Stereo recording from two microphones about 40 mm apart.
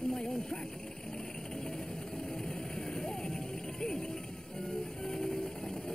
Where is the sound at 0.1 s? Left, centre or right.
Centre.